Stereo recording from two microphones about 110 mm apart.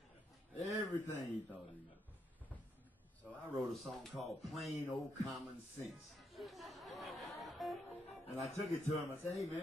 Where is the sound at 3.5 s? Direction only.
Centre (ahead or behind).